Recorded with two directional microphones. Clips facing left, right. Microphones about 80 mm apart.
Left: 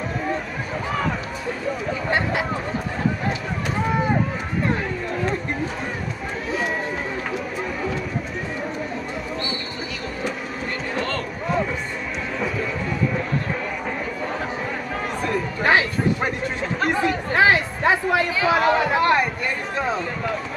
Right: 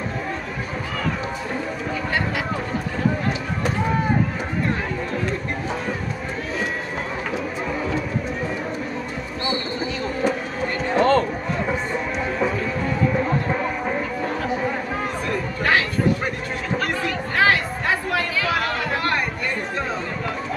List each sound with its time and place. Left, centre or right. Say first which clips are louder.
11.0 s music: right 11 dB; right
17.4 s chatter: left 1 dB; centre